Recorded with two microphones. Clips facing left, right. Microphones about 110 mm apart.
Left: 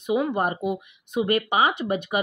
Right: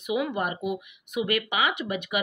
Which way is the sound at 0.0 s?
30° left (ahead or behind).